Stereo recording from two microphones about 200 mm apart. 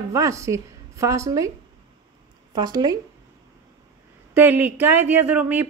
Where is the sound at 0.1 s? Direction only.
15° right (ahead or behind).